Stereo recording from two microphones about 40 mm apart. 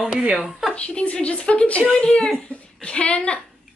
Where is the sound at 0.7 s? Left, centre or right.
Left.